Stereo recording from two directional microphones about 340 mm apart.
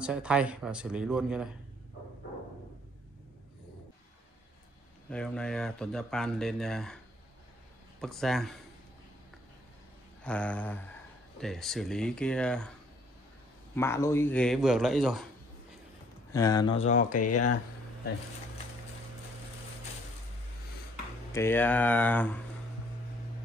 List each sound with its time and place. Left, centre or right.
0.0 s speech: centre
5.1 s speech: centre
8.0 s speech: centre
10.2 s speech: centre
13.7 s speech: centre
16.3 s speech: centre
17.3 s speech: left
21.3 s speech: centre